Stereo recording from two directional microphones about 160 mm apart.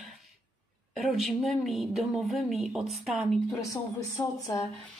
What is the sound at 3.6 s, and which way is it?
Speech, 20° left (ahead or behind).